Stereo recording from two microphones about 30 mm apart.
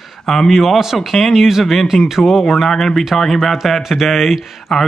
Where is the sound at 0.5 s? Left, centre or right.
Centre.